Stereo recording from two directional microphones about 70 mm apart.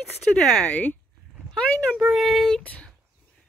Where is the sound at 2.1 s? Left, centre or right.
Centre.